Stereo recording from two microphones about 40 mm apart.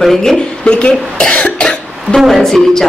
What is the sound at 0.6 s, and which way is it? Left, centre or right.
Speech, left.